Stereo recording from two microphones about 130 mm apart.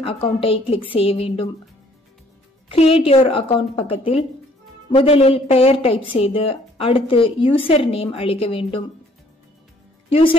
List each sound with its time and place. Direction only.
0.0 s speech: 45° left (ahead or behind)
2.7 s speech: 50° left (ahead or behind)
10.0 s a woman's voice: 50° left (ahead or behind)